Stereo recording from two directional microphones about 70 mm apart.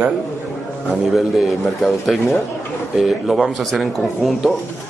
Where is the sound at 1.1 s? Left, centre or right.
Centre.